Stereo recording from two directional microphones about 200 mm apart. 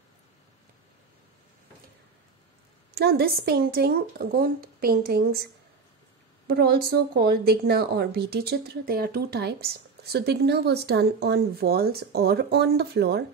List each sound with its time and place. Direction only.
2.9 s a woman's voice: 50° right (ahead or behind)